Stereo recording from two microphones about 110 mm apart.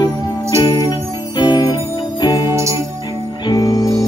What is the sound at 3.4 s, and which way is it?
Music, 35° left (ahead or behind).